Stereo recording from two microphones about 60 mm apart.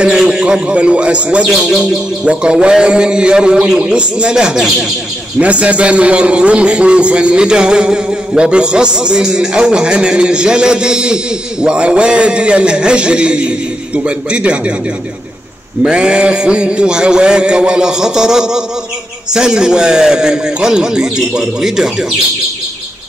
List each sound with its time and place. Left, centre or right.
0.0 s a man's voice: centre
15.8 s a man's voice: centre